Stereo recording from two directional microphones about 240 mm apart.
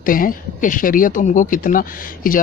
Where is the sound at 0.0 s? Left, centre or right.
Left.